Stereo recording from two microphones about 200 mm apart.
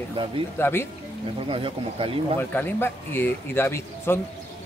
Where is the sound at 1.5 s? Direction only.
25° right (ahead or behind).